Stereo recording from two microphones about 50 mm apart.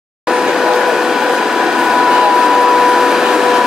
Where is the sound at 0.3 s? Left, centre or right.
Centre.